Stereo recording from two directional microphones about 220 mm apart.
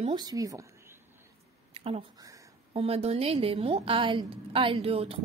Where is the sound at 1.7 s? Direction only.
25° right (ahead or behind).